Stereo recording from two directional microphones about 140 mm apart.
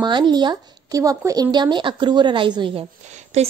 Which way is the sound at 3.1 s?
50° right (ahead or behind).